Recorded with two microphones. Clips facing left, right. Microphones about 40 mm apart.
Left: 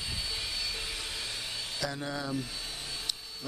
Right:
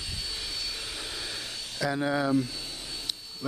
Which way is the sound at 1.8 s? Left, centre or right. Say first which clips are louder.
Right 10 dB; right.